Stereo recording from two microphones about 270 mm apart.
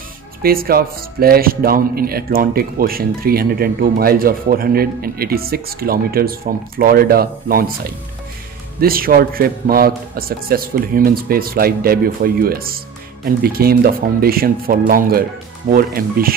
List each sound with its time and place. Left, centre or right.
0.4 s a man's voice: right
8.8 s a man's voice: right